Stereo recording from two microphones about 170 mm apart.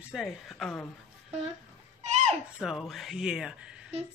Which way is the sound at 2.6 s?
Centre (ahead or behind).